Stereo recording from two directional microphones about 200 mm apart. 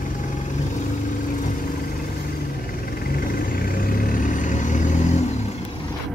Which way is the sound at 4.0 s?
40° left (ahead or behind).